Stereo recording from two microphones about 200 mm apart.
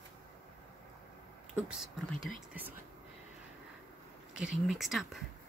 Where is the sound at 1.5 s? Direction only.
5° right (ahead or behind).